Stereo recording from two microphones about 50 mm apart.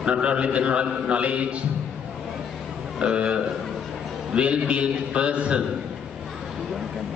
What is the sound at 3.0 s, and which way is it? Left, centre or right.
A man's voice, right.